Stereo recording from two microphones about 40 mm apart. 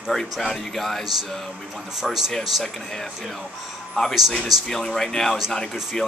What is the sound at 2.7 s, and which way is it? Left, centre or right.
Speech, centre.